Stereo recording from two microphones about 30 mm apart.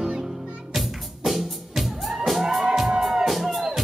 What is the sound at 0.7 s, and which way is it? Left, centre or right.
Music, centre.